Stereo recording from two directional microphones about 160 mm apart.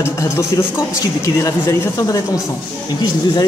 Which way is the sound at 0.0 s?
15° left (ahead or behind).